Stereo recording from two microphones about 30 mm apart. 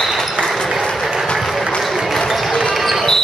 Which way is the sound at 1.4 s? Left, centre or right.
Centre.